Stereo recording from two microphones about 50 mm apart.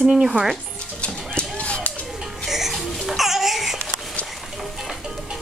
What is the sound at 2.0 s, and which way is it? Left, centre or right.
Music, centre.